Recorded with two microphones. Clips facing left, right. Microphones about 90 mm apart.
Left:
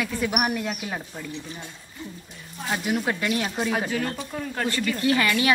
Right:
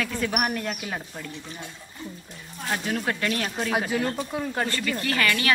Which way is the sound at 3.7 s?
5° right (ahead or behind).